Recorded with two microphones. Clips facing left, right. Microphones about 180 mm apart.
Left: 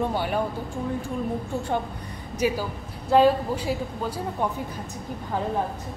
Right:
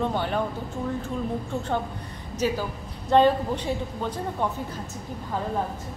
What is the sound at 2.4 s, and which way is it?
A woman's voice, 10° left (ahead or behind).